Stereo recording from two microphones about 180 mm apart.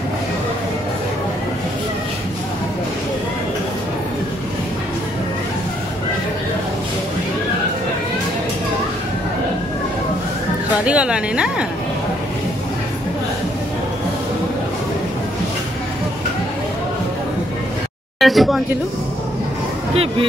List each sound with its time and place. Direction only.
10.9 s speech: 5° right (ahead or behind)
18.2 s speech: centre (ahead or behind)
19.9 s speech: 30° right (ahead or behind)